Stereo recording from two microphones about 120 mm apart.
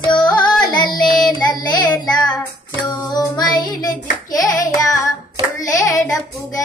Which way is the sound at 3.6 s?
35° left (ahead or behind).